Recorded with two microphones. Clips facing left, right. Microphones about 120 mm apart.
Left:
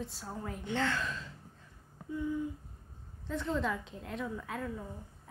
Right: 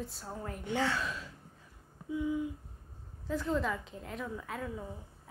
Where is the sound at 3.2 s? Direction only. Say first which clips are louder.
Right 1 dB; 5° right (ahead or behind).